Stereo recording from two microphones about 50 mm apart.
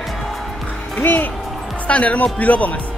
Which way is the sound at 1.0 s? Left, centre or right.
Left.